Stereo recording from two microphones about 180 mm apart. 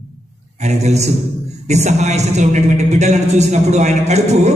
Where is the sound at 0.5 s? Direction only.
40° right (ahead or behind).